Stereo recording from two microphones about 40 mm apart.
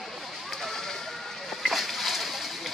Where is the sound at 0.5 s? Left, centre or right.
Centre.